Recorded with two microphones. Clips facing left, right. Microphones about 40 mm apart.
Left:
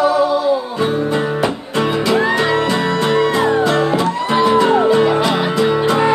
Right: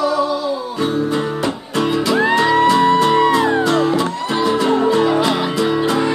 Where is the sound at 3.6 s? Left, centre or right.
Centre.